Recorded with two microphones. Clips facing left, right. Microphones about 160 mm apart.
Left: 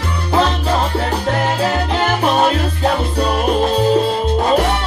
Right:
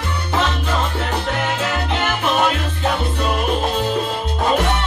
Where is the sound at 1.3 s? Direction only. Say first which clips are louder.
Left 7 dB; 35° left (ahead or behind).